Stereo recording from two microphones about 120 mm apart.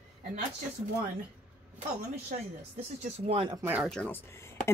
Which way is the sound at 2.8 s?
55° right (ahead or behind).